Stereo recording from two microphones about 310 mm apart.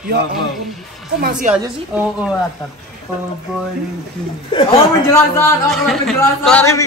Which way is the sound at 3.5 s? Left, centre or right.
Centre.